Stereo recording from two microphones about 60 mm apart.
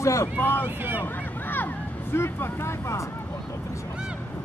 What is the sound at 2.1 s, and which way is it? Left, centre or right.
Speech, left.